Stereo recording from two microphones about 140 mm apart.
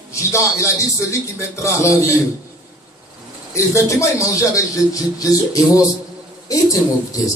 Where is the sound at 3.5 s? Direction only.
20° left (ahead or behind).